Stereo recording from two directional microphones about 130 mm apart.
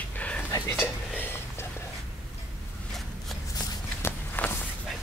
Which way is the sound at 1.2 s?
15° left (ahead or behind).